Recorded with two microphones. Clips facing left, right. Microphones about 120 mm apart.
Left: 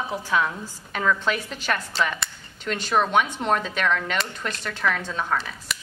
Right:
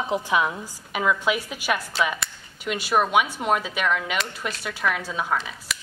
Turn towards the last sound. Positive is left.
turn(degrees=0)  # may be behind; listen again after turning